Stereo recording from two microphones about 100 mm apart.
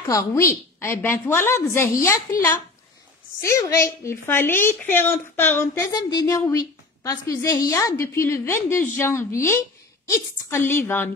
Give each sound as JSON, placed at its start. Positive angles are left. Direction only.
{"t": 0.1, "sound": "a woman's voice", "side_deg": 30}
{"t": 5.9, "sound": "a woman's voice", "side_deg": 40}